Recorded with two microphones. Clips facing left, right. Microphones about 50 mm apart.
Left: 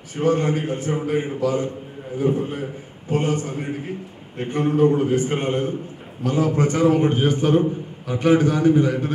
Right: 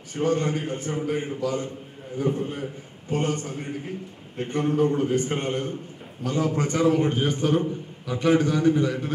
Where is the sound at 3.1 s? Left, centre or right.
Centre.